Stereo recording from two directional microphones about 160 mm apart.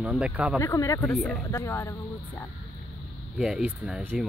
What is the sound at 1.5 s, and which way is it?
Speech, 15° left (ahead or behind).